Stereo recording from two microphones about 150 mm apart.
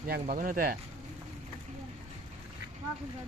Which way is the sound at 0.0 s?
65° right (ahead or behind).